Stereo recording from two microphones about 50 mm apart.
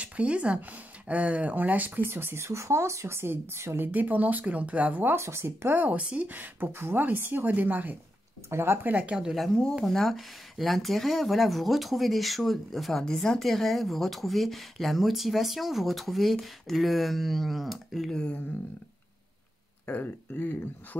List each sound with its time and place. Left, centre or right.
0.0 s speech: right
2.3 s speech: right
3.8 s speech: right
5.1 s speech: right
5.8 s speech: right
8.5 s speech: right
8.8 s speech: right
9.8 s speech: centre
19.9 s speech: left